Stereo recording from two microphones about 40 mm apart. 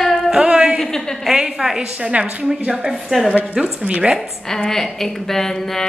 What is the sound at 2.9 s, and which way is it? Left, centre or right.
Speech, centre.